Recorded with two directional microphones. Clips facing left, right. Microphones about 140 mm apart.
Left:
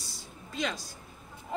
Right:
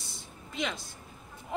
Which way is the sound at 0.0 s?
20° right (ahead or behind).